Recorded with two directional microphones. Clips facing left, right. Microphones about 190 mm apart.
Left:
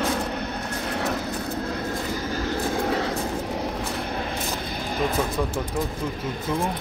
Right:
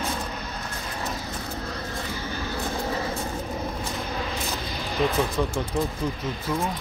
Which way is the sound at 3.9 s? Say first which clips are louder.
Left 2 dB; 55° left (ahead or behind).